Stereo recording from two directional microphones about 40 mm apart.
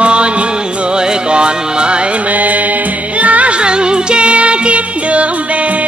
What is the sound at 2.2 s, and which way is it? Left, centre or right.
Music, right.